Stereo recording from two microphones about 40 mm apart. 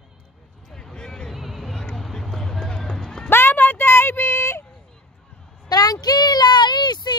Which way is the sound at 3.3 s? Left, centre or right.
Left.